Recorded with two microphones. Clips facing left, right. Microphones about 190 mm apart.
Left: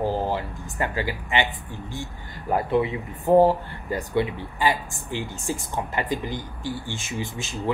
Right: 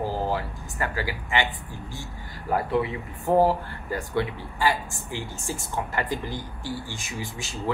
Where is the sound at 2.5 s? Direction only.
20° left (ahead or behind).